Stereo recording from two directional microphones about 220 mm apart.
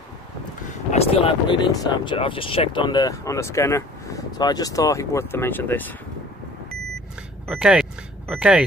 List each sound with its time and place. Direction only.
0.9 s speech: 25° left (ahead or behind); by 5.9 s 10° left (ahead or behind)
7.4 s speech: 5° right (ahead or behind)